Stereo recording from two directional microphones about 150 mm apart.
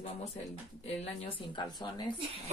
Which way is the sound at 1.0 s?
35° left (ahead or behind).